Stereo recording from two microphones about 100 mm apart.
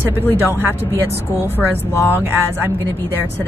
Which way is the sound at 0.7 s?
20° right (ahead or behind).